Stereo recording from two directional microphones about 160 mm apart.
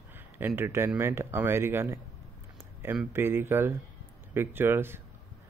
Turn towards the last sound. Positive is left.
turn(degrees=-15)  # may be behind; listen again after turning